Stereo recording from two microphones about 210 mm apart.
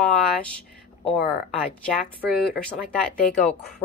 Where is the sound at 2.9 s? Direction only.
5° left (ahead or behind).